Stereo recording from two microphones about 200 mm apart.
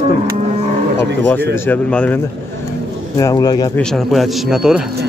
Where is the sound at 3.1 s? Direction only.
20° left (ahead or behind).